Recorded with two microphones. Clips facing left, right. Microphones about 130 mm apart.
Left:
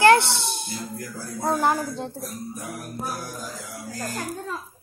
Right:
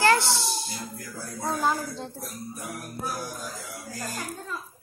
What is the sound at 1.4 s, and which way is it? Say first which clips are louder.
Speech: left 4 dB; 65° left (ahead or behind).